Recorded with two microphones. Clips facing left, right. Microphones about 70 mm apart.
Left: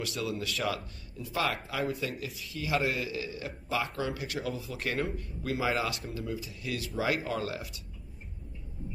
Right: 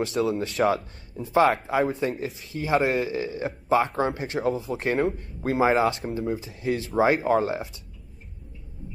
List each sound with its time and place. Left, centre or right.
0.2 s speech: right